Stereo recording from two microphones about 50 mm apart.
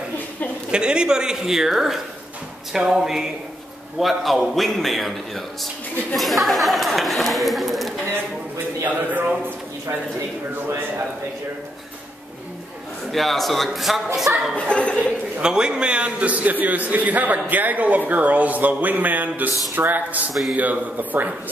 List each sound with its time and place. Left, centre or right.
0.7 s a man's voice: centre
8.1 s a sound: right
13.1 s a man's voice: centre
14.7 s speech: left
15.4 s a man's voice: centre; by 21.3 s right